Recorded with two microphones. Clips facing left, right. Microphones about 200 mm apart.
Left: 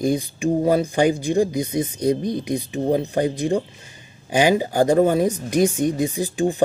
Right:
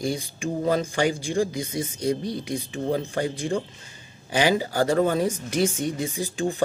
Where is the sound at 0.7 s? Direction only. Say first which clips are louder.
Left 3 dB; 15° left (ahead or behind).